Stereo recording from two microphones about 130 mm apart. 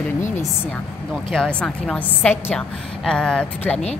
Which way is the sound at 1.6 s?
10° left (ahead or behind).